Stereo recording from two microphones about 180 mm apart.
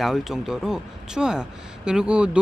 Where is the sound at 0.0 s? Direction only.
Centre (ahead or behind).